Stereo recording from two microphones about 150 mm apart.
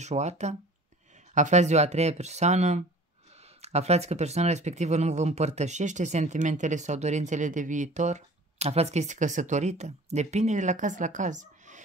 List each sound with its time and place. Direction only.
0.0 s speech: 50° right (ahead or behind)